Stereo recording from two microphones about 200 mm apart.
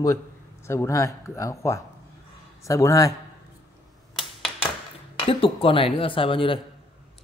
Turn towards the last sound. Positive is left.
turn(degrees=25)  # may be behind; listen again after turning